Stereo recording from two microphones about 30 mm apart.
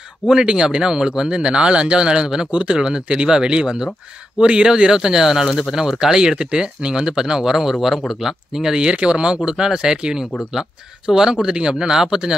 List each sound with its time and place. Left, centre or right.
0.3 s speech: right
8.9 s speech: right
11.3 s speech: right